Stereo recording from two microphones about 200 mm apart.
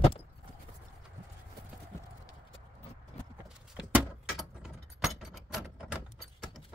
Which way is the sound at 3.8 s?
5° right (ahead or behind).